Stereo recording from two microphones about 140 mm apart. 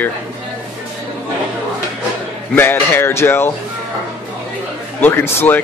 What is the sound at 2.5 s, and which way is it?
Speech, 15° left (ahead or behind).